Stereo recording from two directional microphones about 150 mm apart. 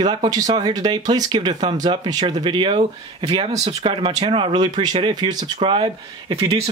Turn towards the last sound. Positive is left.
turn(degrees=-40)  # may be behind; listen again after turning